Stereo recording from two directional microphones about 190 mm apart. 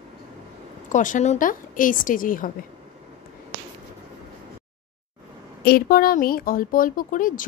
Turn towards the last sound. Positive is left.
turn(degrees=45)  # may be behind; listen again after turning